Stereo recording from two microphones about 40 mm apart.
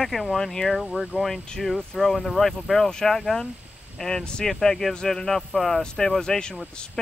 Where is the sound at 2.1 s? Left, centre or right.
Centre.